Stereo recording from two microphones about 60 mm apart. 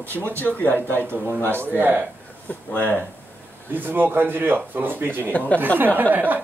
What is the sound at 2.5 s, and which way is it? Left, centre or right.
Speech, left.